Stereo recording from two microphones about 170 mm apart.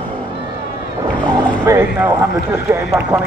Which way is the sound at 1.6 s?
15° right (ahead or behind).